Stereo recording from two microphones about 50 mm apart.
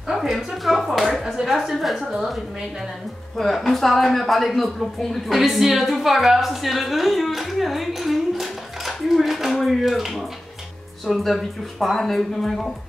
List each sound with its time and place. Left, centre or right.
0.1 s speech: centre
3.3 s speech: centre